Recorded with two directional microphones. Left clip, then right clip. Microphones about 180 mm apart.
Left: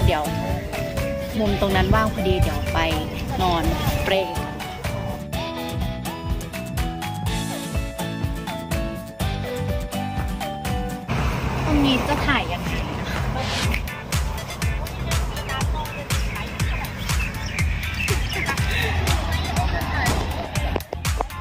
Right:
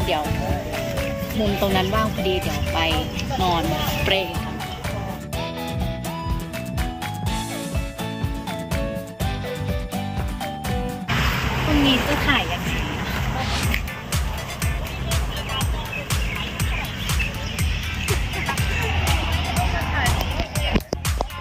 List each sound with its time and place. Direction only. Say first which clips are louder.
1.4 s speech: even; centre (ahead or behind)
11.1 s music: right 6 dB; 55° left (ahead or behind)
12.1 s a sound: right 1 dB; centre (ahead or behind)
18.6 s music: even; centre (ahead or behind)